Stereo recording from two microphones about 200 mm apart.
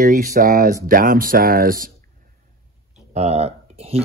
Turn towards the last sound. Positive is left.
turn(degrees=-30)  # may be behind; listen again after turning